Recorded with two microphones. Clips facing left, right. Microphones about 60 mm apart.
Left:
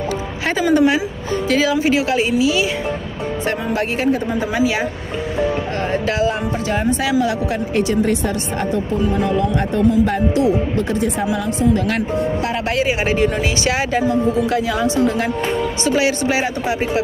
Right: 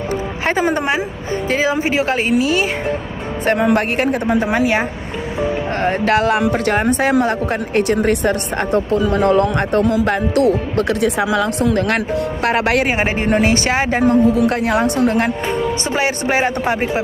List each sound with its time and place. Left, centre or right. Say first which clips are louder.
0.5 s a woman's voice: left 2 dB; right
3.5 s speech: right 5 dB; right
5.8 s a woman's voice: right 6 dB; right
6.1 s speech: right 4 dB; right
8.9 s speech: right 5 dB; right
15.8 s a woman's voice: left 2 dB; right